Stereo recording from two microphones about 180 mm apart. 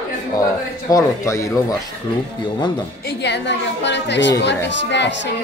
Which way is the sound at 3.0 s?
70° left (ahead or behind).